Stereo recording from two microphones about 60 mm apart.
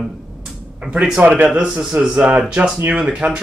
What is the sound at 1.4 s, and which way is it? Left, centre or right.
Speech, centre.